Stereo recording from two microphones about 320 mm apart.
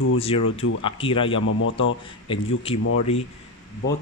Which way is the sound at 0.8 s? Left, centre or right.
Centre.